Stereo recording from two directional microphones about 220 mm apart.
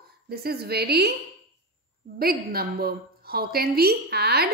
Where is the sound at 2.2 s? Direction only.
45° right (ahead or behind).